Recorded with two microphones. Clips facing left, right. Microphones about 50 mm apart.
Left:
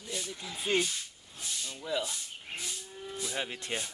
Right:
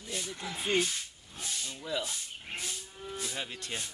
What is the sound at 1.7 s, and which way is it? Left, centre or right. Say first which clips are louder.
Speech: left 2 dB; centre.